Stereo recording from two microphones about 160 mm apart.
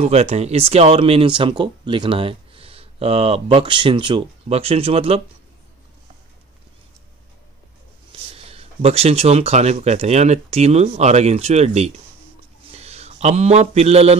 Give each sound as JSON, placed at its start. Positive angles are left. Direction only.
{"t": 0.0, "sound": "speech", "side_deg": -40}
{"t": 8.1, "sound": "a man's voice", "side_deg": -35}